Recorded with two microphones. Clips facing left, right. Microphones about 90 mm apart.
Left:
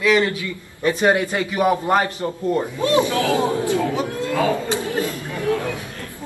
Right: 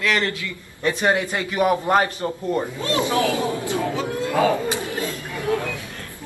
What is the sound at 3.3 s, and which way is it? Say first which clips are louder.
Speech: left 4 dB; 20° left (ahead or behind).